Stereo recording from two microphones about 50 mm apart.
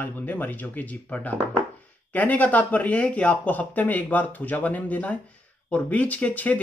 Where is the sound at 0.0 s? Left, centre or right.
Left.